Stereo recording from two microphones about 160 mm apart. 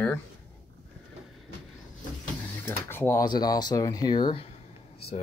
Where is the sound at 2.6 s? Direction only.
15° left (ahead or behind).